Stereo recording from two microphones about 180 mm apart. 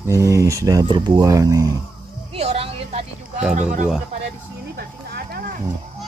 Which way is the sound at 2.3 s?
35° right (ahead or behind).